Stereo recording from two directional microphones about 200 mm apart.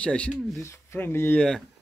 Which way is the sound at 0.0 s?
5° left (ahead or behind).